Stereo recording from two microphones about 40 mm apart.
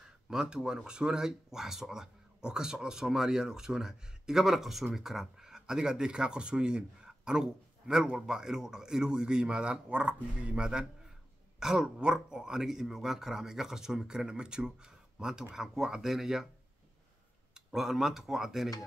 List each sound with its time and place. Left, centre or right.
0.3 s speech: centre
17.6 s speech: centre